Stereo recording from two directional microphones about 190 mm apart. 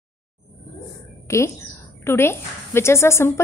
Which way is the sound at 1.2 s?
15° left (ahead or behind).